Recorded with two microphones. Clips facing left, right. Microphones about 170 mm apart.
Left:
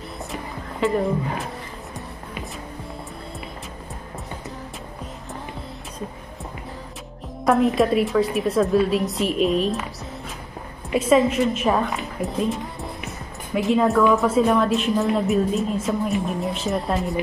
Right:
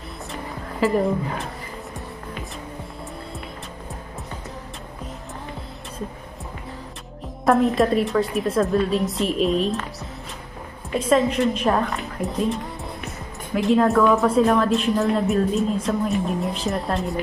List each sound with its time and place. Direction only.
0.7 s speech: centre (ahead or behind)
7.4 s a woman's voice: centre (ahead or behind)
10.9 s a woman's voice: 5° left (ahead or behind)
13.6 s a woman's voice: centre (ahead or behind)